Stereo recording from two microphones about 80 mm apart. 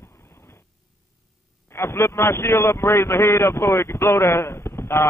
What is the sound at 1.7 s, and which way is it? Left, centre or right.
A man's voice, left.